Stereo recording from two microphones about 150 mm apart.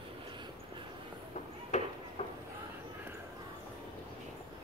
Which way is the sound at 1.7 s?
50° left (ahead or behind).